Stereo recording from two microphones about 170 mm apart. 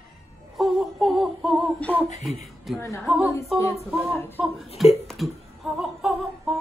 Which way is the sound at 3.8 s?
Centre (ahead or behind).